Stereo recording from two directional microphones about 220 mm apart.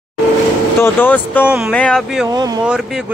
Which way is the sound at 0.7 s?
10° left (ahead or behind).